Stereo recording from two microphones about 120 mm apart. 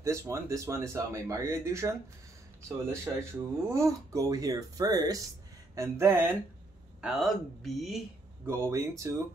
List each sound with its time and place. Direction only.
0.0 s speech: 25° right (ahead or behind)
5.8 s speech: 20° right (ahead or behind)
7.0 s speech: centre (ahead or behind)
8.5 s speech: 20° right (ahead or behind)